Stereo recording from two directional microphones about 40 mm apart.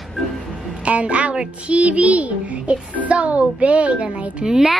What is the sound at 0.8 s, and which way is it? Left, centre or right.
A child's voice, right.